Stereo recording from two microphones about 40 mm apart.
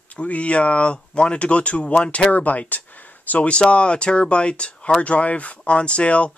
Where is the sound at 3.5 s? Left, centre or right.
Left.